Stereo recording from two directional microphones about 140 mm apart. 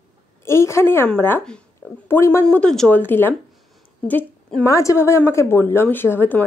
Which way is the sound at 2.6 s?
5° left (ahead or behind).